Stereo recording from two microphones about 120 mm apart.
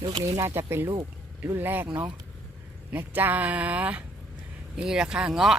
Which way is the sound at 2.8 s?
15° right (ahead or behind).